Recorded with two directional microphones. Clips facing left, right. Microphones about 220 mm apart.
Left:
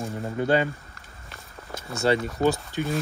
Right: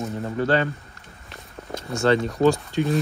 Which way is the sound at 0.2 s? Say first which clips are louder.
Right 1 dB; 15° left (ahead or behind).